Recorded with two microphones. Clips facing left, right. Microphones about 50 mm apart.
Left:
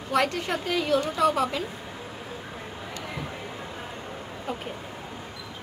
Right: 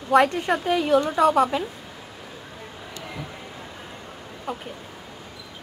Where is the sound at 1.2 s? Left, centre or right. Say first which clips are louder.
Right 4 dB; centre.